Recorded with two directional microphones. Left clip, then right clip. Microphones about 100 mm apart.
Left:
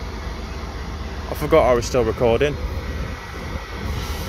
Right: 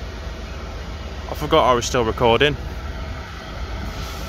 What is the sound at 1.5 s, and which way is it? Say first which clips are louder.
Speech: even; 30° right (ahead or behind).